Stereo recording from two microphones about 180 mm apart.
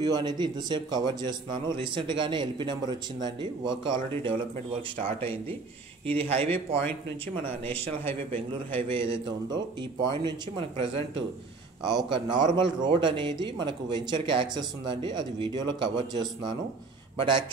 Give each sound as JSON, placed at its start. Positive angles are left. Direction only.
{"t": 0.0, "sound": "a man's voice", "side_deg": -25}
{"t": 8.3, "sound": "a man's voice", "side_deg": -30}
{"t": 11.8, "sound": "a man's voice", "side_deg": -25}